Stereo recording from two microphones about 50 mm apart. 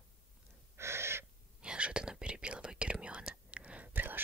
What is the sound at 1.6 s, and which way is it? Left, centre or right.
Whispering, right.